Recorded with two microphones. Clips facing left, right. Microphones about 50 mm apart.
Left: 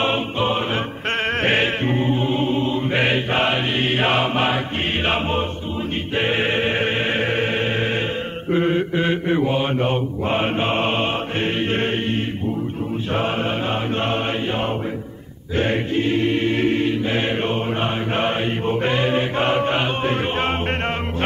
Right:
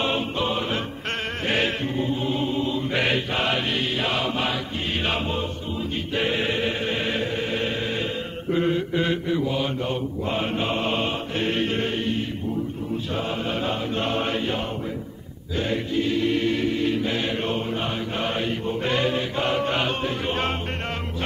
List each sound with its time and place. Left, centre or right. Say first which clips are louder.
0.0 s music: left 4 dB; left
1.9 s choir: left 5 dB; left
3.9 s mantra: left 6 dB; left
5.0 s choir: left 5 dB; left
6.1 s mantra: left 4 dB; left
6.8 s music: left 5 dB; left
8.5 s mantra: left 4 dB; left
9.3 s mantra: left 5 dB; left
15.5 s choir: left 4 dB; left
18.1 s mantra: left 4 dB; left
18.9 s chant: left 4 dB; left